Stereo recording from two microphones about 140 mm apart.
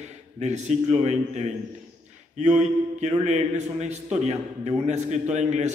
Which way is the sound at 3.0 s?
55° right (ahead or behind).